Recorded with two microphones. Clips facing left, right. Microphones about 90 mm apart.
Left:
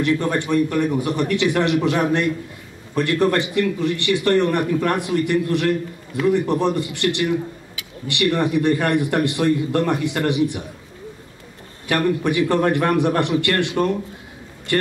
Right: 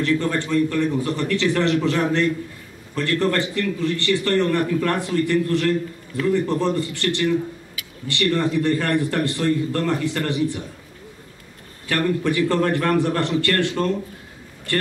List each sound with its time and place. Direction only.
0.0 s a man's voice: 15° left (ahead or behind)
11.9 s a man's voice: 15° left (ahead or behind)